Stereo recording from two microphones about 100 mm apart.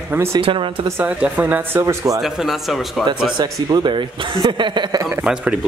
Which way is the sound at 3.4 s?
45° right (ahead or behind).